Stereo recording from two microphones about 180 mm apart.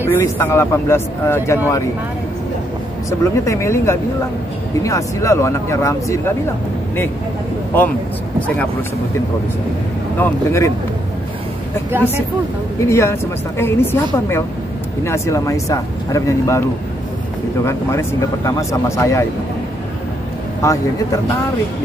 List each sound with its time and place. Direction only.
0.1 s a woman's voice: 10° left (ahead or behind)
3.1 s a woman's voice: 15° left (ahead or behind)
10.1 s a woman's voice: 15° left (ahead or behind)
12.8 s a woman's voice: 15° left (ahead or behind)
17.6 s a woman's voice: 15° left (ahead or behind)
20.6 s a woman's voice: 15° left (ahead or behind)